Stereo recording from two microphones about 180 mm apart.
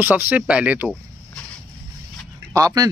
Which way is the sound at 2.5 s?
20° right (ahead or behind).